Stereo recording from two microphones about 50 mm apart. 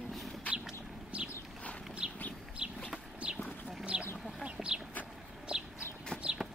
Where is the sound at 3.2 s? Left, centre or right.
Centre.